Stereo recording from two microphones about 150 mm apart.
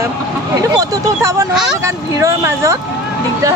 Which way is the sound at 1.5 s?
Centre (ahead or behind).